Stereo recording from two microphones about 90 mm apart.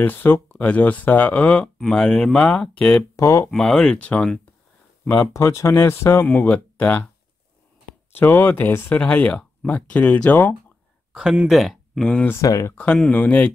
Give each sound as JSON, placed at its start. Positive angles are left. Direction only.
{"t": 0.0, "sound": "speech", "side_deg": 20}
{"t": 3.2, "sound": "speech", "side_deg": 35}
{"t": 3.4, "sound": "speech", "side_deg": 5}
{"t": 5.0, "sound": "speech", "side_deg": 30}
{"t": 6.2, "sound": "speech", "side_deg": 20}
{"t": 8.2, "sound": "speech", "side_deg": 25}
{"t": 11.1, "sound": "speech", "side_deg": -5}
{"t": 12.4, "sound": "speech", "side_deg": 35}
{"t": 12.7, "sound": "speech", "side_deg": 15}